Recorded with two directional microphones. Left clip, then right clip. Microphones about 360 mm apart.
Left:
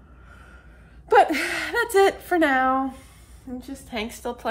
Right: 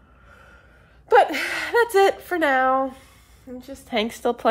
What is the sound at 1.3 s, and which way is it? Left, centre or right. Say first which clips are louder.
Speech: right 2 dB; centre.